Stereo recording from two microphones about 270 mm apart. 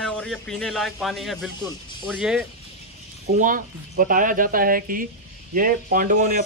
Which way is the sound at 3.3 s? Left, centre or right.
Right.